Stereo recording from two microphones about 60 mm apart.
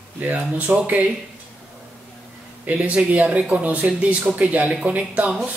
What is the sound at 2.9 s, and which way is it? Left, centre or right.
Speech, right.